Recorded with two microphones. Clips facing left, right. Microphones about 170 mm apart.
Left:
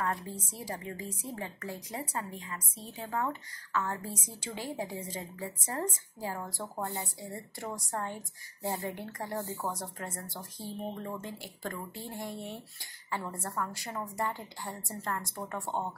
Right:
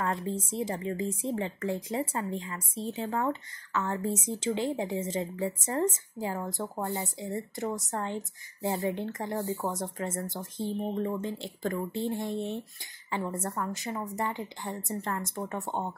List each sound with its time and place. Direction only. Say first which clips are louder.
0.0 s a woman's voice: right 4 dB; 25° right (ahead or behind)
10.6 s speech: right 9 dB; 60° right (ahead or behind)
11.9 s speech: right 9 dB; 25° right (ahead or behind)